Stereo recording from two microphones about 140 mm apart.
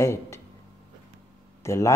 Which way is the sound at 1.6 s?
20° left (ahead or behind).